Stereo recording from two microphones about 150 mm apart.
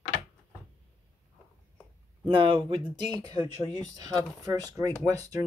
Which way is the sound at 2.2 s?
35° right (ahead or behind).